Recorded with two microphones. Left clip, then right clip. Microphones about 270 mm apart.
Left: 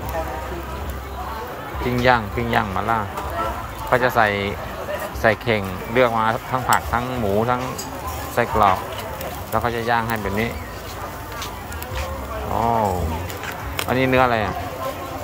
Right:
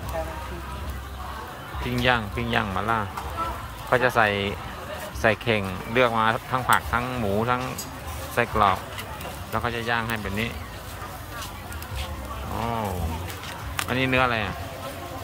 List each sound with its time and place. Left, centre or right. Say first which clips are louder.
1.9 s speech: left 6 dB; centre
12.5 s speech: left 9 dB; centre